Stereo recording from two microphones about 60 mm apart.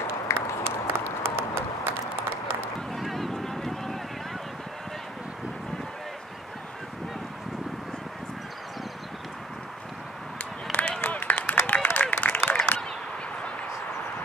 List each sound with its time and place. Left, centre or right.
0.7 s a sound: right
2.9 s boat: centre
10.7 s run: left
11.5 s applause: left